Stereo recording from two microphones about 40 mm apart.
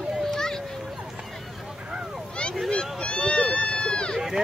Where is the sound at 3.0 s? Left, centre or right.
Left.